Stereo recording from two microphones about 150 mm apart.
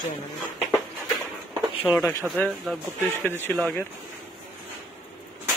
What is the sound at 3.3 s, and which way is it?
Speech, 15° left (ahead or behind).